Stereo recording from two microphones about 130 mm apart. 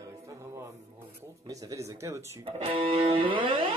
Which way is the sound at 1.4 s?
25° right (ahead or behind).